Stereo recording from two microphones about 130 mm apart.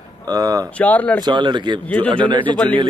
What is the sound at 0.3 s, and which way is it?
Speech, 30° right (ahead or behind).